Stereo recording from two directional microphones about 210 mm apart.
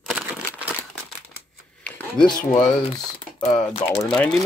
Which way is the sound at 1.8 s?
5° left (ahead or behind).